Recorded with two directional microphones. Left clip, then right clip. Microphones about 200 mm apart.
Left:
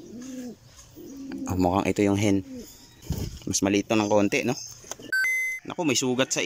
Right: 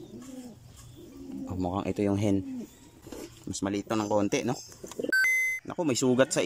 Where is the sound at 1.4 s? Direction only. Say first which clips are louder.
Left 8 dB; 15° left (ahead or behind).